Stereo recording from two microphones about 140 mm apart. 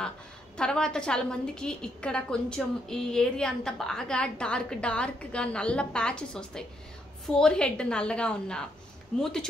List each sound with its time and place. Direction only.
0.6 s a woman's voice: 5° left (ahead or behind)